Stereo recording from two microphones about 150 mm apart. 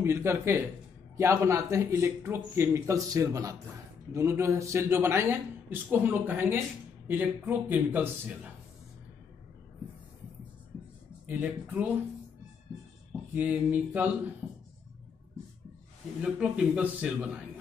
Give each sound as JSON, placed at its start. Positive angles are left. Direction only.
{"t": 0.0, "sound": "a man's voice", "side_deg": -15}
{"t": 11.2, "sound": "speech", "side_deg": -10}
{"t": 13.3, "sound": "speech", "side_deg": -10}
{"t": 14.4, "sound": "a sound", "side_deg": 0}
{"t": 16.2, "sound": "speech", "side_deg": -5}